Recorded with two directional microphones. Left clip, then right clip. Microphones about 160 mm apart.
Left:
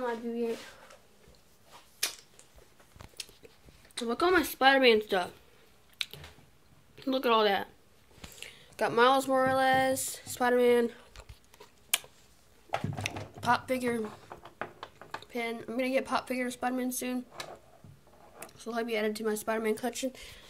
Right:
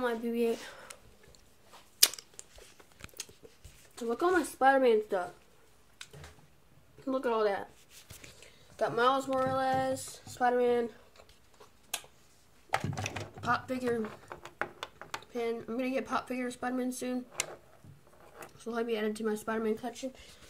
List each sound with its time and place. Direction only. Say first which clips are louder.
0.0 s speech: right 2 dB; 30° right (ahead or behind)
2.0 s a sound: right 8 dB; 50° right (ahead or behind)
4.1 s speech: left 2 dB; 10° left (ahead or behind)
7.0 s speech: left 4 dB; 15° left (ahead or behind)
12.7 s typing: right 1 dB; 5° left (ahead or behind)
13.4 s speech: left 4 dB; 10° left (ahead or behind)
14.3 s a sound: right 3 dB; 30° right (ahead or behind)
15.3 s speech: left 1 dB; 5° left (ahead or behind)
18.4 s speech: left 1 dB; centre (ahead or behind)